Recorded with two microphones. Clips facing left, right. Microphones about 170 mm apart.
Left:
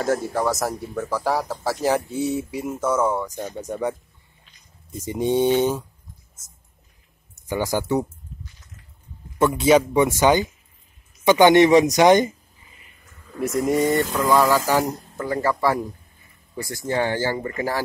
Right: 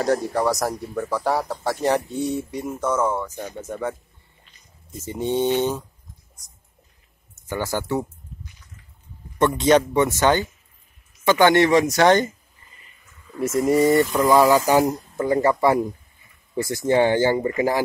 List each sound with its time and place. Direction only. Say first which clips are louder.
0.0 s speech: right 1 dB; centre (ahead or behind)
4.9 s speech: left 2 dB; 15° left (ahead or behind)
7.3 s speech: left 2 dB; 15° left (ahead or behind)
9.4 s speech: even; 5° left (ahead or behind)
13.4 s speech: right 2 dB; centre (ahead or behind)
14.1 s speech: right 3 dB; 15° right (ahead or behind)